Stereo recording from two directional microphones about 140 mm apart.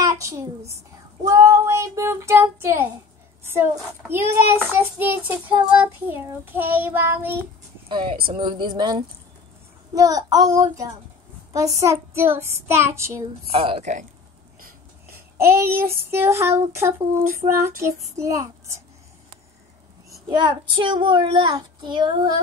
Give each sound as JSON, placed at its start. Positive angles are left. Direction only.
{"t": 0.0, "sound": "a child's voice", "side_deg": -20}
{"t": 1.2, "sound": "child singing", "side_deg": -25}
{"t": 3.4, "sound": "a woman's voice", "side_deg": -15}
{"t": 4.1, "sound": "child singing", "side_deg": -15}
{"t": 7.9, "sound": "a child's voice", "side_deg": -35}
{"t": 9.9, "sound": "child singing", "side_deg": -25}
{"t": 13.5, "sound": "a woman's voice", "side_deg": -45}
{"t": 15.3, "sound": "child singing", "side_deg": -20}
{"t": 15.7, "sound": "child singing", "side_deg": -90}
{"t": 16.0, "sound": "child singing", "side_deg": -15}
{"t": 20.2, "sound": "a child's voice", "side_deg": -30}